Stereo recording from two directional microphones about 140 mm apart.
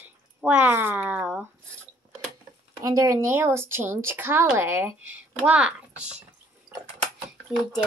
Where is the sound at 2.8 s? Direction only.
25° right (ahead or behind); by 6.1 s 5° right (ahead or behind).